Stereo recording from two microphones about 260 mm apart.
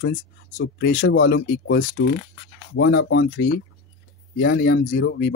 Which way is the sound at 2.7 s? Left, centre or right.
Left.